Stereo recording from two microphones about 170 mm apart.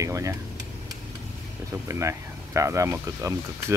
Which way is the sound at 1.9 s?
15° right (ahead or behind).